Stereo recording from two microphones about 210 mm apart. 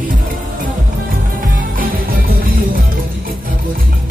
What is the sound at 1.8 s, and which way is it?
Music, 45° right (ahead or behind).